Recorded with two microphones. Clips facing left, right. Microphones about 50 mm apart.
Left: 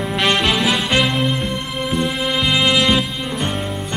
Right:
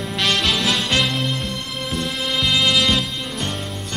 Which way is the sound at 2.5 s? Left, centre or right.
Centre.